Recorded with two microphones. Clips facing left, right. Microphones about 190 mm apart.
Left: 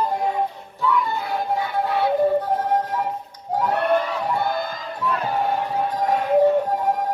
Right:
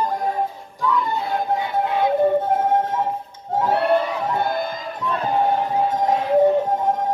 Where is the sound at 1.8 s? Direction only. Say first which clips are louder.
Right 1 dB; 15° right (ahead or behind).